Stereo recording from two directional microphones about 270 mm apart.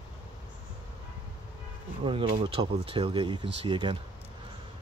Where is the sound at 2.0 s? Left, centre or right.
Centre.